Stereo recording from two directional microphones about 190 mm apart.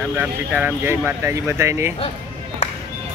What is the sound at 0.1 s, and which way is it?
Speech, 5° right (ahead or behind).